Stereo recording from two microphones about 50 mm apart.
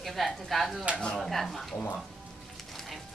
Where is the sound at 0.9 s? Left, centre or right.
Centre.